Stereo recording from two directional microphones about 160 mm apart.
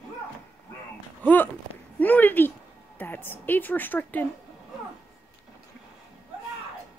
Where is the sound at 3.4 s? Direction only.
10° left (ahead or behind).